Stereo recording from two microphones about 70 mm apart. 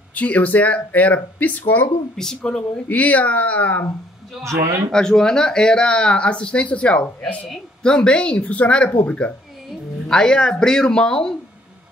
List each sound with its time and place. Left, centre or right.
0.1 s speech: left
2.1 s speech: centre
4.4 s a man's voice: right
4.9 s speech: centre